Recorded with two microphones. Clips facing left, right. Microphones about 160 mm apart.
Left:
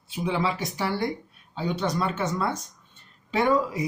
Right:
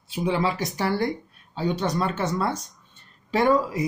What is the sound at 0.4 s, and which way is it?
Speech, 40° right (ahead or behind).